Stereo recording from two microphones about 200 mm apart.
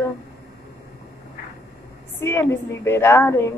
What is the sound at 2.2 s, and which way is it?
Child singing, 10° left (ahead or behind).